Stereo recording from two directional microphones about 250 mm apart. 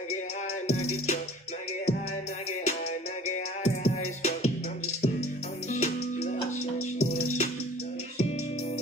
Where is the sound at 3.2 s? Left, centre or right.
Left.